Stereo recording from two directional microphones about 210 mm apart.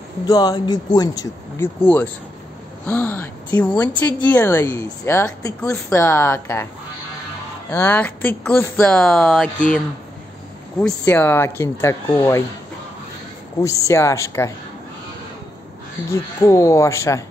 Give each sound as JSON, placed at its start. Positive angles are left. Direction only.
{"t": 0.3, "sound": "a woman's voice", "side_deg": 20}
{"t": 7.7, "sound": "speech", "side_deg": 10}
{"t": 10.8, "sound": "a woman's voice", "side_deg": 10}
{"t": 13.6, "sound": "a woman's voice", "side_deg": 15}
{"t": 16.1, "sound": "a woman's voice", "side_deg": 15}